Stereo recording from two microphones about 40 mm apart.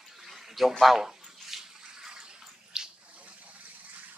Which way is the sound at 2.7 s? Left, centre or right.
Centre.